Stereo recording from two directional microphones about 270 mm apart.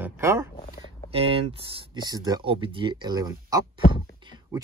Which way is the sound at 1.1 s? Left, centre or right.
Right.